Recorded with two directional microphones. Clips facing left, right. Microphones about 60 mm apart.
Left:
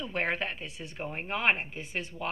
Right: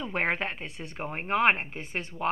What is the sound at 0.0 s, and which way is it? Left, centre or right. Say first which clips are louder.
Speech: right 2 dB; right.